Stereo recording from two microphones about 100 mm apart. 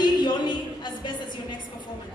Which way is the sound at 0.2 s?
50° left (ahead or behind).